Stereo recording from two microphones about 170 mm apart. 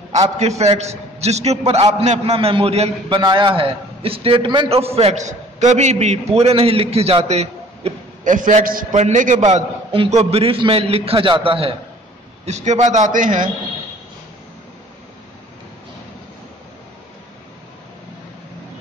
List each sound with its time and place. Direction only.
0.4 s a man's voice: 40° right (ahead or behind)